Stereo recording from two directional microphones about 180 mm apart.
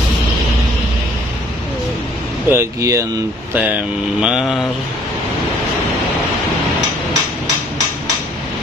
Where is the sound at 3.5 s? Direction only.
10° right (ahead or behind).